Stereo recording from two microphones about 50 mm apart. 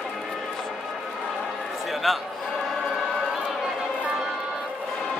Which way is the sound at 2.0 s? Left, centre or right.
Centre.